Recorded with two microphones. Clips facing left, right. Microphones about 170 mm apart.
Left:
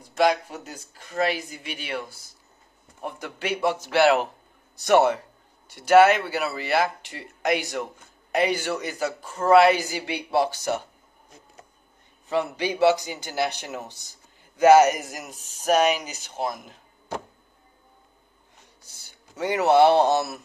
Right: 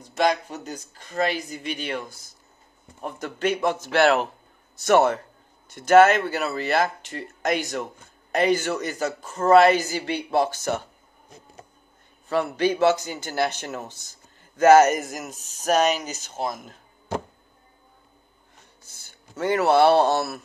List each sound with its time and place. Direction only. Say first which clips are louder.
0.2 s a man's voice: left 1 dB; 5° left (ahead or behind)
12.3 s a man's voice: right 3 dB; 15° left (ahead or behind)
19.0 s speech: right 3 dB; 15° left (ahead or behind)